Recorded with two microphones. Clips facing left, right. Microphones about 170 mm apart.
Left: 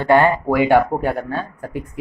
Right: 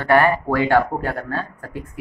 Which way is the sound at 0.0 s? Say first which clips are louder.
Left 2 dB; 20° left (ahead or behind).